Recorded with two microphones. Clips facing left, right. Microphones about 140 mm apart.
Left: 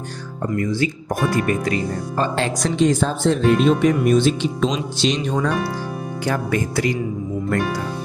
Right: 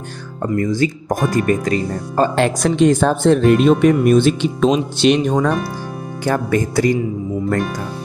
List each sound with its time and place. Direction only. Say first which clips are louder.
1.3 s speech: right 4 dB; 40° right (ahead or behind)
2.3 s speech: right 5 dB; 60° right (ahead or behind); by 7.0 s 40° right (ahead or behind)